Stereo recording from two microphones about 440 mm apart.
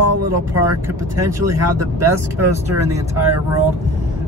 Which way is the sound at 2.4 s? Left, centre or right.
Centre.